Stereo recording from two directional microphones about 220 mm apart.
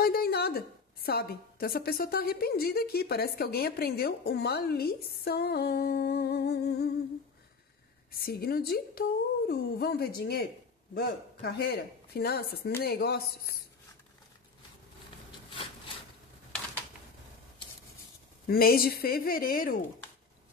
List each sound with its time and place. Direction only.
0.0 s a woman's voice: 45° left (ahead or behind)
8.1 s a woman's voice: 45° left (ahead or behind)
18.5 s a woman's voice: 45° left (ahead or behind)